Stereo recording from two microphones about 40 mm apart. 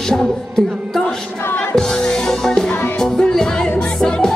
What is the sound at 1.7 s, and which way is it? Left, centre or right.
Music, centre.